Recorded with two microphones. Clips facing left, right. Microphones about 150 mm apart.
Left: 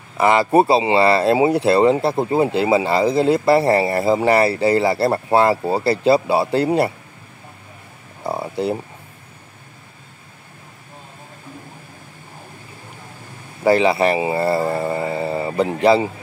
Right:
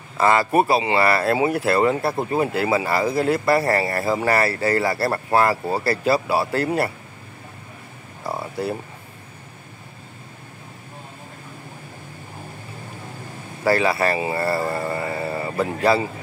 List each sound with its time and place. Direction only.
0.2 s speech: 20° left (ahead or behind)
8.2 s a sound: 20° left (ahead or behind)
13.7 s speech: 20° left (ahead or behind)